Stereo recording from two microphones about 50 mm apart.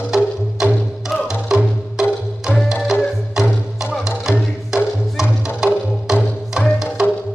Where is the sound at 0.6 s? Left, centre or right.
Centre.